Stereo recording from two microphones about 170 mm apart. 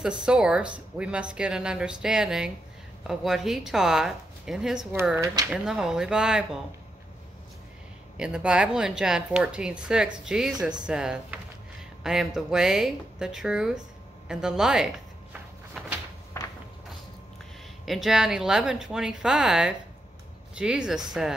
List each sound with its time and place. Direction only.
0.0 s a woman's voice: 5° right (ahead or behind)
5.1 s speech: 20° right (ahead or behind)
5.5 s a woman's voice: 5° right (ahead or behind)
8.2 s a woman's voice: 5° right (ahead or behind)
15.8 s a sound: centre (ahead or behind)
16.3 s a sound: 15° left (ahead or behind)
17.8 s a woman's voice: centre (ahead or behind)